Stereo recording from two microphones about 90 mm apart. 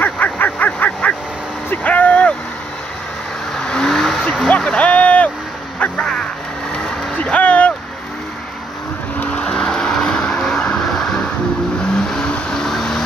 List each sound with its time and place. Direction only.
0.0 s a sound: 20° left (ahead or behind)
1.7 s vehicle: 15° left (ahead or behind)
3.5 s vehicle: 10° left (ahead or behind)
4.5 s a sound: 10° left (ahead or behind)
5.8 s music: 10° left (ahead or behind)
6.8 s vehicle: 15° left (ahead or behind)
9.2 s vehicle: 10° left (ahead or behind)